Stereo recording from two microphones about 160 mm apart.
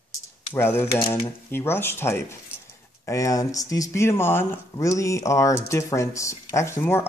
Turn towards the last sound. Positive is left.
turn(degrees=15)  # may be behind; listen again after turning